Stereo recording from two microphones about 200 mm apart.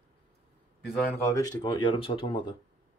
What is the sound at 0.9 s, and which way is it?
Speech, 10° left (ahead or behind).